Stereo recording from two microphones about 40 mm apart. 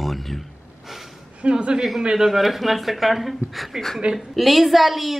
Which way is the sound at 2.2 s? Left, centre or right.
Centre.